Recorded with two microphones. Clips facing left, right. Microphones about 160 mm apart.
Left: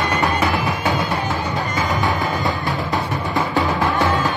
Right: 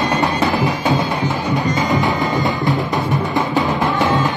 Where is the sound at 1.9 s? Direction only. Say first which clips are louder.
Right 3 dB; 20° right (ahead or behind).